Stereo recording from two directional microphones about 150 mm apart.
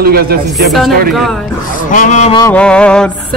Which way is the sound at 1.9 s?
55° left (ahead or behind).